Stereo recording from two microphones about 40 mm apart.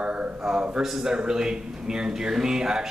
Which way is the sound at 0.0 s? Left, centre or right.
Right.